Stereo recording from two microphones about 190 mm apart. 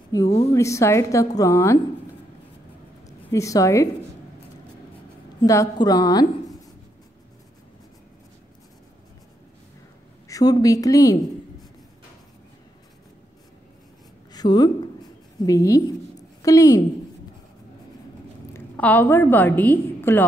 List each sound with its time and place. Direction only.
0.1 s a woman's voice: 15° left (ahead or behind)
3.1 s a woman's voice: 15° left (ahead or behind)
5.5 s a woman's voice: 15° left (ahead or behind)
10.2 s a woman's voice: 20° left (ahead or behind)
14.3 s a woman's voice: 20° left (ahead or behind)
18.5 s a woman's voice: 10° left (ahead or behind)